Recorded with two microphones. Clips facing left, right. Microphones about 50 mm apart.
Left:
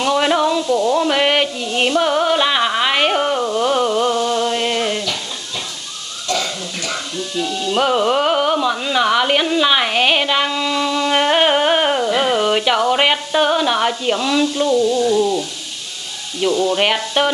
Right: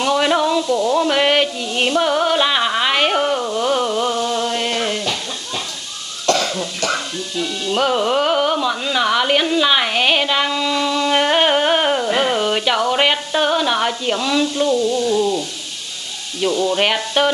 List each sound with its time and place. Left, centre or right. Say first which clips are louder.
0.0 s a sound: left 1 dB; centre
6.2 s cough: right 4 dB; right
7.3 s music: left 1 dB; centre
12.2 s speech: left 2 dB; centre
16.3 s speech: left 1 dB; centre
16.7 s stir: even; centre